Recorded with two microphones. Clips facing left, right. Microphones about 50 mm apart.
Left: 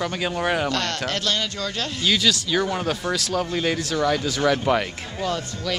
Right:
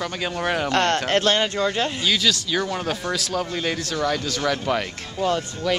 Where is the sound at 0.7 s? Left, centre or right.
Right.